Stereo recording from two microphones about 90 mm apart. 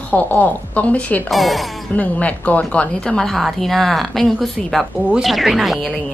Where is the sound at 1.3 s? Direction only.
Centre (ahead or behind).